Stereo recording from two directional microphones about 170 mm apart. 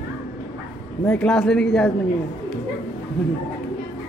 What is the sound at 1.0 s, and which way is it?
Speech, 5° left (ahead or behind).